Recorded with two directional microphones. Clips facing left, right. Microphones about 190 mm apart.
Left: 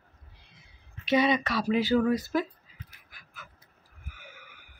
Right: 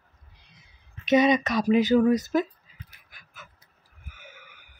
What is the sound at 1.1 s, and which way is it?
Speech, 20° right (ahead or behind).